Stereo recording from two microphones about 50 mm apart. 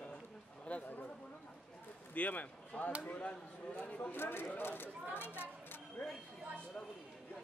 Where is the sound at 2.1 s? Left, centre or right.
Left.